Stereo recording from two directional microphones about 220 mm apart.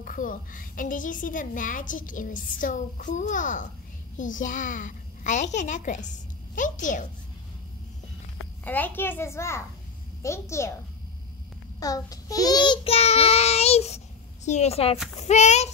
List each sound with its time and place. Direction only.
0.0 s a woman's voice: 40° left (ahead or behind)
8.6 s a child's voice: 10° left (ahead or behind)
11.8 s child singing: 15° left (ahead or behind)
15.1 s a woman's voice: 30° left (ahead or behind)